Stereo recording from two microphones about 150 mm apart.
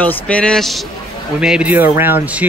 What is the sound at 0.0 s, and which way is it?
A man's voice, 10° left (ahead or behind).